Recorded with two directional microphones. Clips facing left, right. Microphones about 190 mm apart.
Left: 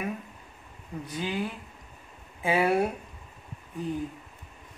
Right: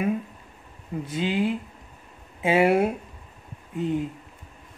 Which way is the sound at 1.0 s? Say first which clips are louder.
Right 7 dB; 25° right (ahead or behind).